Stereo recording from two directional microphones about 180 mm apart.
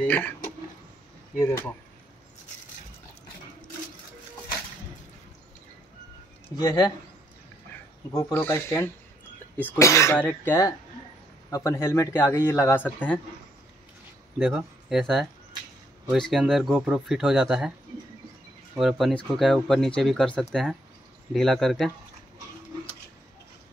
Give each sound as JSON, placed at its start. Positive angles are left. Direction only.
{"t": 0.0, "sound": "speech", "side_deg": 10}
{"t": 6.6, "sound": "speech", "side_deg": 20}
{"t": 8.1, "sound": "a man's voice", "side_deg": 15}
{"t": 14.4, "sound": "speech", "side_deg": 0}
{"t": 18.8, "sound": "speech", "side_deg": 0}